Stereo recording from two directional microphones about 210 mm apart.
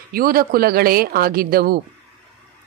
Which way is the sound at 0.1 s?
45° right (ahead or behind).